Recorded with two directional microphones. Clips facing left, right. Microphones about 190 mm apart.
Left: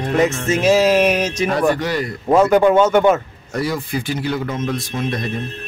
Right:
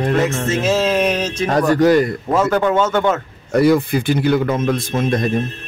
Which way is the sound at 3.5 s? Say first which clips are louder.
Right 8 dB; 60° right (ahead or behind).